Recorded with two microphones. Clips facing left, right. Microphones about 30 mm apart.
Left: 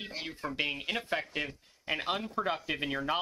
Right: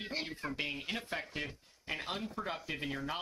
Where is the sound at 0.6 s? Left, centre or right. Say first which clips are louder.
Left 7 dB; centre.